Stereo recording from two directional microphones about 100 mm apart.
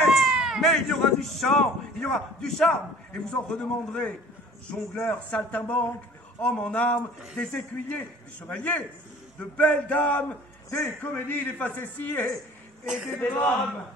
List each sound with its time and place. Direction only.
0.1 s a man's voice: 5° right (ahead or behind); by 13.6 s 20° left (ahead or behind)